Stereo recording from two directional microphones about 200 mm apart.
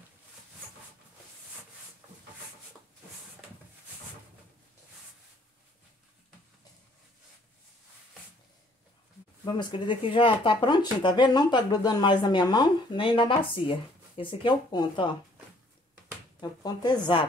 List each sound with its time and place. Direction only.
9.4 s speech: 25° left (ahead or behind)
16.3 s speech: 20° left (ahead or behind)